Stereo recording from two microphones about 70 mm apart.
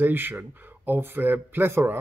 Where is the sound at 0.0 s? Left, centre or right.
Right.